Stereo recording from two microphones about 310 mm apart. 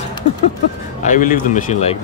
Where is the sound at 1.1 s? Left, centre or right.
Left.